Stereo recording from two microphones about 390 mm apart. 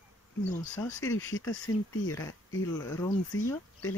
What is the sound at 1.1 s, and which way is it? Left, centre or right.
Speech, left.